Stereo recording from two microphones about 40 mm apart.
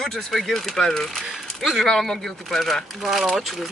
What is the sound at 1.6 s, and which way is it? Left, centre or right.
Speech, centre.